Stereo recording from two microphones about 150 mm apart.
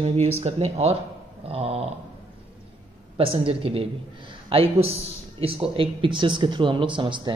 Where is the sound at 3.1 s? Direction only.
35° right (ahead or behind).